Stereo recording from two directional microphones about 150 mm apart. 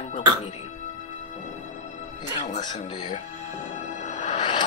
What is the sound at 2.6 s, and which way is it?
Speech, 30° left (ahead or behind).